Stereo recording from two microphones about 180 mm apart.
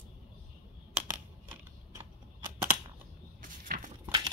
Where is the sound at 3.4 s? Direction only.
50° right (ahead or behind).